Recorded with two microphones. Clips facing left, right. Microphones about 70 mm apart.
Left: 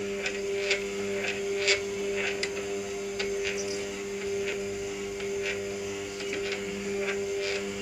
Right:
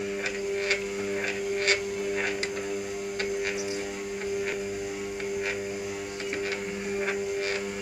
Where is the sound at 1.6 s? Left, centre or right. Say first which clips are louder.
Right 1 dB; right.